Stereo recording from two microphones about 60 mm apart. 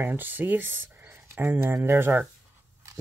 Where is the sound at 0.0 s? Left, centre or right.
Right.